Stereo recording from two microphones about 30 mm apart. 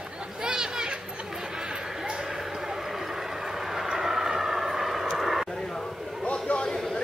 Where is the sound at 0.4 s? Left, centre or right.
Right.